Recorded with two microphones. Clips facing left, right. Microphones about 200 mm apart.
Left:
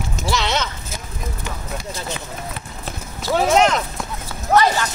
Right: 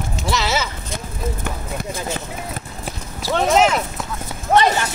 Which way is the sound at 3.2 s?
Centre (ahead or behind).